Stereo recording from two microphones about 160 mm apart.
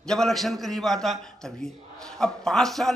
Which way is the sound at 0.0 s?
5° left (ahead or behind).